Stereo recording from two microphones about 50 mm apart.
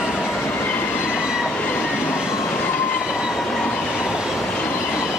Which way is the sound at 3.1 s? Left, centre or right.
Centre.